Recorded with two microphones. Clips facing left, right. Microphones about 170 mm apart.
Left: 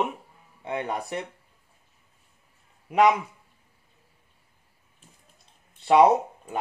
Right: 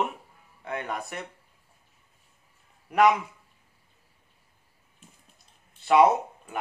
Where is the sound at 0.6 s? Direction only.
25° left (ahead or behind).